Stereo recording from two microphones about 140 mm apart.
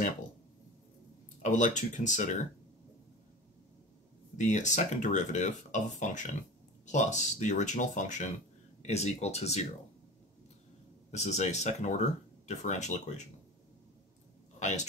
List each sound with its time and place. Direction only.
1.4 s speech: 60° left (ahead or behind)
4.4 s speech: 60° left (ahead or behind)
11.1 s speech: 55° left (ahead or behind)